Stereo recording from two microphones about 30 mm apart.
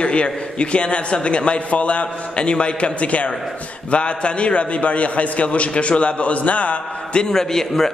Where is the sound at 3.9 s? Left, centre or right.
Left.